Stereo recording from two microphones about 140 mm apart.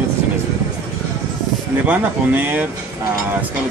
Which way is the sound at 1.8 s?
10° right (ahead or behind).